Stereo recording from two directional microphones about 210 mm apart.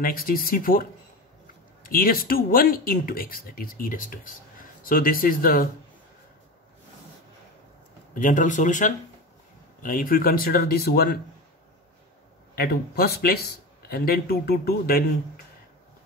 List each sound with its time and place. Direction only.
0.0 s speech: 45° left (ahead or behind)
8.1 s speech: 40° left (ahead or behind)
12.5 s speech: 45° left (ahead or behind)